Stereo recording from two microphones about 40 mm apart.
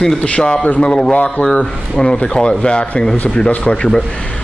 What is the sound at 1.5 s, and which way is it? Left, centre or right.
Speech, left.